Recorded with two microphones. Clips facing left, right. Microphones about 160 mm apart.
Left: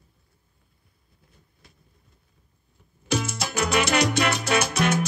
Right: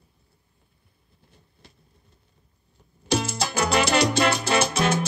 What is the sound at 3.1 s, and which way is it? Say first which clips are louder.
Salsa music: right 2 dB; 30° right (ahead or behind).